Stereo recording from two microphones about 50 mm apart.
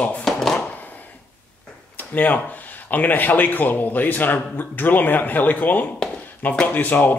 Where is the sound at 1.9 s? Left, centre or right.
Left.